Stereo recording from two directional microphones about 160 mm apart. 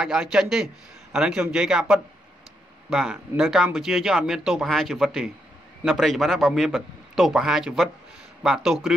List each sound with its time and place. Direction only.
0.0 s speech: centre (ahead or behind)